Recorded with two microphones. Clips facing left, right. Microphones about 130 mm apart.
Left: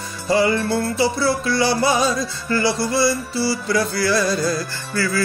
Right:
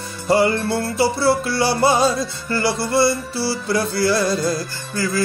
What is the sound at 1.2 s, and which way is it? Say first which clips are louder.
Music: right 1 dB; 55° right (ahead or behind).